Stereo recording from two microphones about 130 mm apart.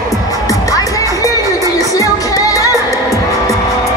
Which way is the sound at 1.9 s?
25° left (ahead or behind).